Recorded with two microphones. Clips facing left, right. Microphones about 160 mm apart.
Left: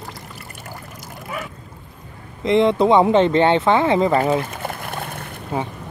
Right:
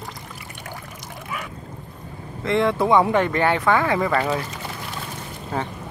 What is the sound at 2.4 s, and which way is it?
Speech, 20° left (ahead or behind).